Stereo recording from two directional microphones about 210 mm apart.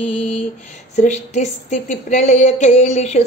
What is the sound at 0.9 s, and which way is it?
A woman's voice, 35° left (ahead or behind).